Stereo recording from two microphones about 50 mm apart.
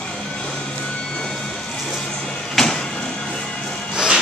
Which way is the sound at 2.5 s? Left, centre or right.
Centre.